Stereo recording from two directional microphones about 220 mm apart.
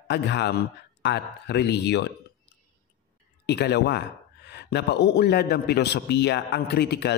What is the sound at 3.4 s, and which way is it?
Speech, 50° left (ahead or behind).